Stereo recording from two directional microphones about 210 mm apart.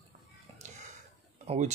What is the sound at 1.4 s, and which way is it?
Speech, 30° right (ahead or behind).